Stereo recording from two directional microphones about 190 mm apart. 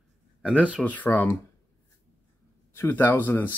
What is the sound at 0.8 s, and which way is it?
Speech, 10° left (ahead or behind).